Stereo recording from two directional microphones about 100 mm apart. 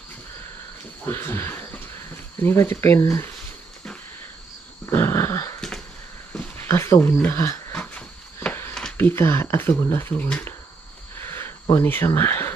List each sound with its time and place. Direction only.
1.0 s speech: 25° left (ahead or behind)
4.9 s dog: 25° left (ahead or behind)
7.7 s a sound: 15° left (ahead or behind)
8.9 s speech: 25° left (ahead or behind)
11.7 s speech: 25° left (ahead or behind)